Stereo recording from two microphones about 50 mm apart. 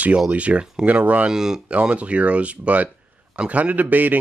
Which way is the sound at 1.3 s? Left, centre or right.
Centre.